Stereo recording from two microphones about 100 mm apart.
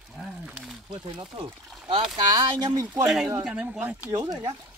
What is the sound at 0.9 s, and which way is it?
Speech, 55° right (ahead or behind).